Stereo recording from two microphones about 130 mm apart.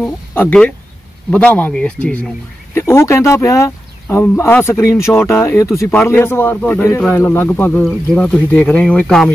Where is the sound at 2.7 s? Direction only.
20° left (ahead or behind).